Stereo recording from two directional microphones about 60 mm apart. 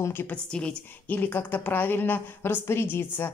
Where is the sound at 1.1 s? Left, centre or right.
Left.